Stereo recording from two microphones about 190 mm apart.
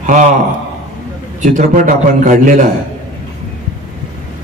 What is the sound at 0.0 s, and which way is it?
Speech, 40° right (ahead or behind).